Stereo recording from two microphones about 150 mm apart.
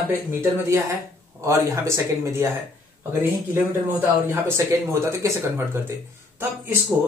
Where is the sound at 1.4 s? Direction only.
20° right (ahead or behind).